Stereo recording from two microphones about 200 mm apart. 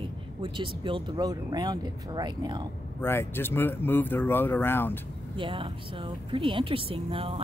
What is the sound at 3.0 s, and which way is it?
Speech, 10° left (ahead or behind).